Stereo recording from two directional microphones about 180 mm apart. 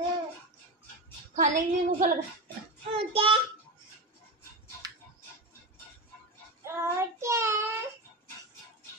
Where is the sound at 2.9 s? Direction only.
30° right (ahead or behind).